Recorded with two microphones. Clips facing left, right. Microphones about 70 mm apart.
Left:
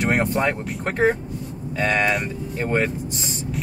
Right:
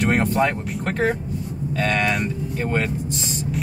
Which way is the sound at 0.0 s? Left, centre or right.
Centre.